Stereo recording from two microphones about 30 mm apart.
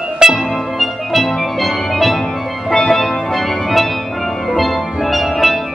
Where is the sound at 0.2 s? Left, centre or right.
Centre.